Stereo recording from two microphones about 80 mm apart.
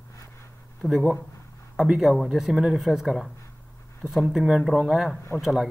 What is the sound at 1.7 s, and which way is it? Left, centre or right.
Speech, centre.